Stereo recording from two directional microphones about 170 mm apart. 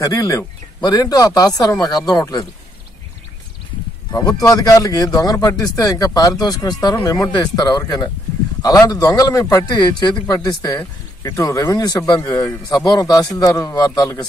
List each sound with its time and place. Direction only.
0.0 s speech: 20° left (ahead or behind)
4.1 s speech: 20° left (ahead or behind)